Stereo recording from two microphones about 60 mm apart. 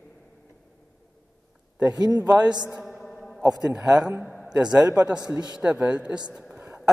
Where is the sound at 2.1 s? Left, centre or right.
Right.